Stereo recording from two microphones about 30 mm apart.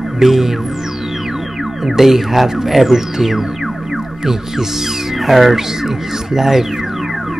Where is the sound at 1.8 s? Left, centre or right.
Centre.